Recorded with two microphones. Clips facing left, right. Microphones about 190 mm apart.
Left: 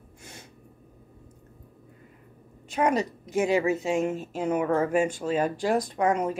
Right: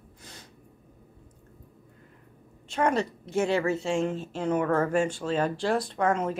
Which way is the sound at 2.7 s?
10° left (ahead or behind).